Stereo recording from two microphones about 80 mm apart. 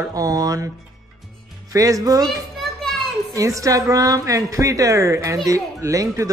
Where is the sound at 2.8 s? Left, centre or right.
Centre.